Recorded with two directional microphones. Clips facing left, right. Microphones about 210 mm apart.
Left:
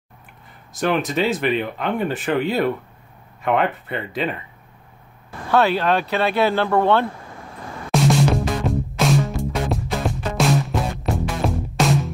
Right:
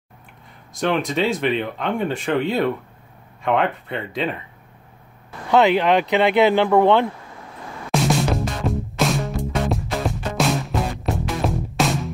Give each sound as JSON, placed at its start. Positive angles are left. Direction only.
{"t": 0.7, "sound": "speech", "side_deg": 0}
{"t": 5.5, "sound": "speech", "side_deg": -15}
{"t": 7.9, "sound": "music", "side_deg": 0}